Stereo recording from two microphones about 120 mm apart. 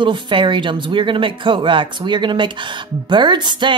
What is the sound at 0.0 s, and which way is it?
Speech, 45° right (ahead or behind).